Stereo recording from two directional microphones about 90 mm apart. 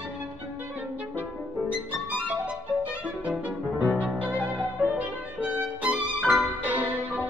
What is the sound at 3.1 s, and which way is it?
Music, 15° right (ahead or behind).